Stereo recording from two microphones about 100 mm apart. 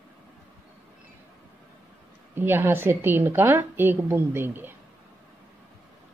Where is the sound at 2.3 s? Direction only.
20° right (ahead or behind).